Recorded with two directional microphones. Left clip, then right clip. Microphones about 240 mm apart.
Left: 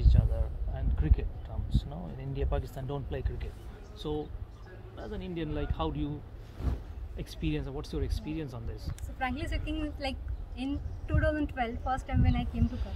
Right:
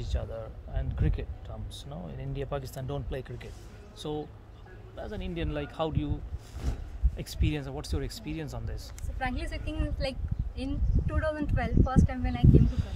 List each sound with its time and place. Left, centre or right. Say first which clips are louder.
0.0 s a sound: even; right
4.0 s speech: even; right
6.6 s a sound: left 1 dB; centre
7.2 s speech: right 1 dB; right
9.2 s speech: even; centre
12.6 s speech: right 1 dB; right